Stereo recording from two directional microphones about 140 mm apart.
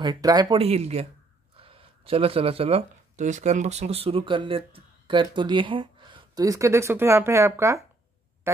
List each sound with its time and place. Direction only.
0.0 s speech: 30° right (ahead or behind)
0.6 s speech: 45° right (ahead or behind); by 7.8 s 20° right (ahead or behind)